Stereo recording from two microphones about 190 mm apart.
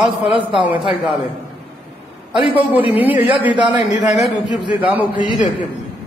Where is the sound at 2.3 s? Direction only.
25° right (ahead or behind).